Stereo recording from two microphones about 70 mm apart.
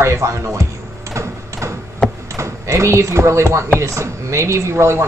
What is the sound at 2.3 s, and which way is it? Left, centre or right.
Speech, right.